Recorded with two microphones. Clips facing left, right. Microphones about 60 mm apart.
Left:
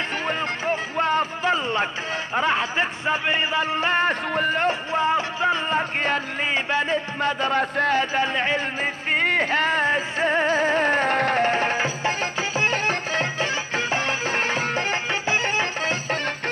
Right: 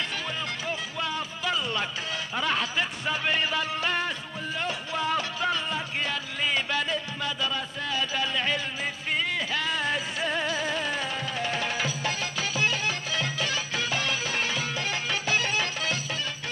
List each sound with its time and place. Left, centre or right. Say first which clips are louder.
0.3 s music: left 8 dB; left
2.3 s speech: left 6 dB; left
5.8 s speech: left 8 dB; left
9.1 s music: left 8 dB; left